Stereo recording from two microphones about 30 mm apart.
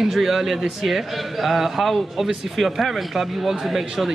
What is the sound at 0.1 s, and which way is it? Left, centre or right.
Speech, centre.